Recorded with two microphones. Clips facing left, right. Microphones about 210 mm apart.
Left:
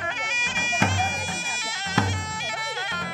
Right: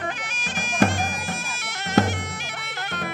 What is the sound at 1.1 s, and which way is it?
Bagpipes, 60° right (ahead or behind).